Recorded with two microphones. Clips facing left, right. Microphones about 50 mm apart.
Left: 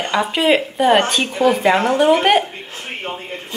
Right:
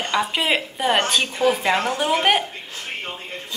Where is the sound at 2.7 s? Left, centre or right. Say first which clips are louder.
Left 3 dB; left.